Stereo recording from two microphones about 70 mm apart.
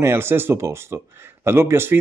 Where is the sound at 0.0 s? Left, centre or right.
Right.